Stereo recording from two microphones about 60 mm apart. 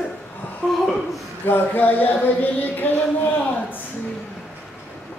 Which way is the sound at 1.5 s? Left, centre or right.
Left.